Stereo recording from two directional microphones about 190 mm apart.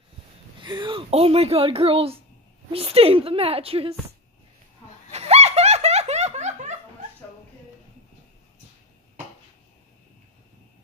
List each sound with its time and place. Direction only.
0.6 s speech: 25° right (ahead or behind)
5.1 s laughter: 35° right (ahead or behind)